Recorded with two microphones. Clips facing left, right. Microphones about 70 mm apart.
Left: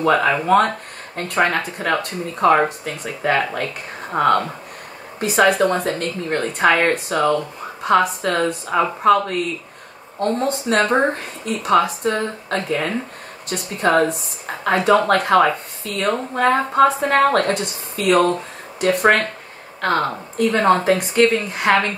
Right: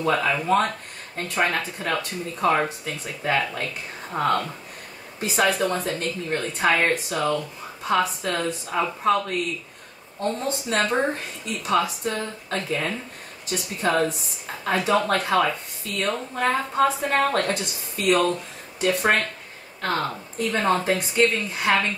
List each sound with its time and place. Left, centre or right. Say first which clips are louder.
0.0 s speech: left 6 dB; left
8.5 s speech: left 6 dB; left